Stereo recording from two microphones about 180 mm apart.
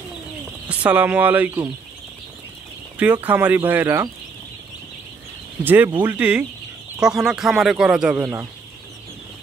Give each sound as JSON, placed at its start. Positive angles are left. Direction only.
{"t": 0.7, "sound": "speech", "side_deg": -10}
{"t": 3.0, "sound": "speech", "side_deg": -10}
{"t": 5.6, "sound": "speech", "side_deg": -10}
{"t": 8.2, "sound": "speech", "side_deg": -15}